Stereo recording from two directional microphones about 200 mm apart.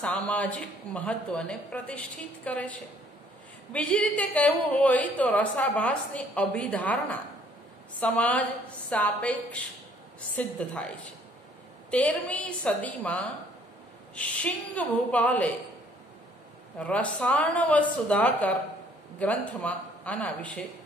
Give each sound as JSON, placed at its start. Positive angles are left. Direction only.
{"t": 0.0, "sound": "a woman's voice", "side_deg": 5}
{"t": 11.9, "sound": "a woman's voice", "side_deg": 5}
{"t": 16.7, "sound": "a woman's voice", "side_deg": 5}